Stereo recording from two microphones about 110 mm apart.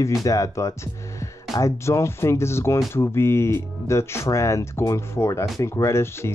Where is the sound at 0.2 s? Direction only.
30° left (ahead or behind).